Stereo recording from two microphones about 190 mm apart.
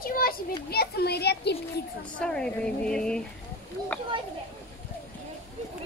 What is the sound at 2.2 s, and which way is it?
Speech, 5° left (ahead or behind).